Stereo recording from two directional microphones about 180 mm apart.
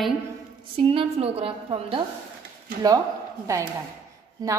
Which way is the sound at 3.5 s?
15° right (ahead or behind).